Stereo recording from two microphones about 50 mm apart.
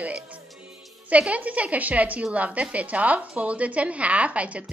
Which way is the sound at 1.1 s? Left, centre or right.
Right.